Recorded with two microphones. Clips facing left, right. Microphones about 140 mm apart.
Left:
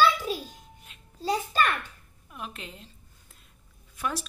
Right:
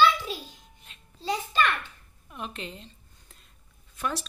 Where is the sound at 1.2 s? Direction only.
40° left (ahead or behind).